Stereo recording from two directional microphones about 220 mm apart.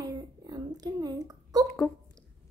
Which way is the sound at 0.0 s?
15° right (ahead or behind).